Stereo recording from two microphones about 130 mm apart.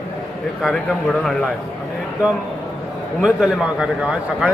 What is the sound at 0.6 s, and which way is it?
Speech, centre (ahead or behind).